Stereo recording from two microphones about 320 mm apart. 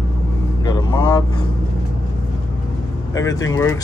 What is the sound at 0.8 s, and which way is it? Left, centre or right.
Speech, centre.